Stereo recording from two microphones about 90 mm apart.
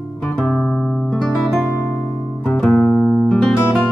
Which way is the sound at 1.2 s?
Centre (ahead or behind).